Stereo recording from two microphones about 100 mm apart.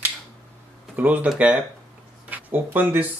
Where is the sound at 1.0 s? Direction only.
15° right (ahead or behind).